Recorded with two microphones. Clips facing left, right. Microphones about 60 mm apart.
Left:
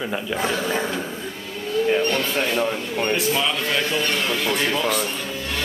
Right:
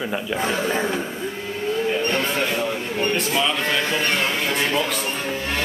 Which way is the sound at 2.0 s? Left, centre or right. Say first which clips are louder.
Even; right.